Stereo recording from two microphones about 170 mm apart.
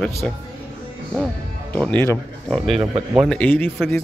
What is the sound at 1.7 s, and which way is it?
Speech, 10° left (ahead or behind).